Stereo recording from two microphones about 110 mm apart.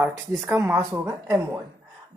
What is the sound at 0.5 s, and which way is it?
A woman's voice, 20° right (ahead or behind).